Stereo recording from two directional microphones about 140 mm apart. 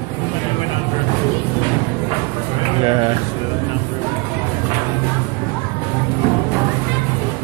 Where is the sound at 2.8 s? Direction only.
35° right (ahead or behind).